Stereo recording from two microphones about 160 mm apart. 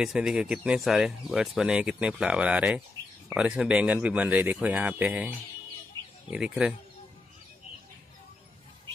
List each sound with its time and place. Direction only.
0.0 s speech: 5° right (ahead or behind)
6.3 s speech: 5° right (ahead or behind)